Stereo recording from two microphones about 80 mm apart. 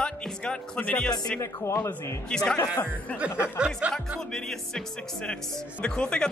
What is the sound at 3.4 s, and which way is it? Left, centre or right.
Speech, centre.